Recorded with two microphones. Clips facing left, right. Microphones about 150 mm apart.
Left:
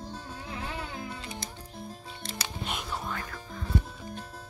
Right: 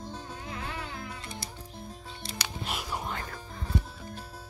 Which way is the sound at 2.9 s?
20° right (ahead or behind).